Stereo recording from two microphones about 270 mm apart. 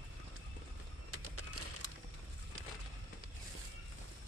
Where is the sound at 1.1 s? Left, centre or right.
Right.